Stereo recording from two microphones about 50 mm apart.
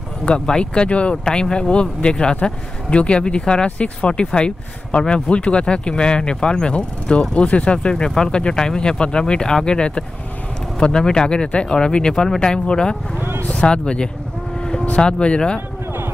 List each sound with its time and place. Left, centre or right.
0.2 s speech: centre
13.2 s speech: right
13.5 s speech: left